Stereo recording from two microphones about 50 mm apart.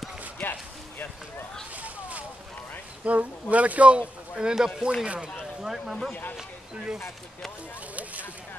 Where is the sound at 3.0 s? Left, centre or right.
Right.